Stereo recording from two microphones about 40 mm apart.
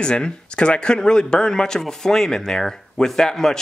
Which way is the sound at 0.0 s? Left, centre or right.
Left.